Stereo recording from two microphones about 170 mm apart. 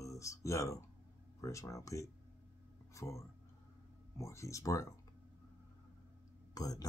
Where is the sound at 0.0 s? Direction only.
20° left (ahead or behind).